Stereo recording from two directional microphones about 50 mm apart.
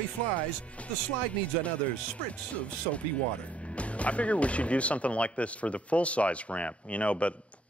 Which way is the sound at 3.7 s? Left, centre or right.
Left.